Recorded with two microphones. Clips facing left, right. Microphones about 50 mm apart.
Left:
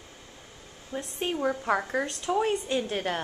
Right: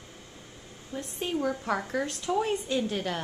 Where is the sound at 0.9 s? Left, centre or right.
Left.